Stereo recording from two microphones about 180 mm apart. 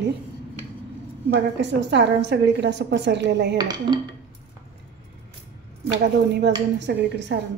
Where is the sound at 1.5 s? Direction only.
75° right (ahead or behind).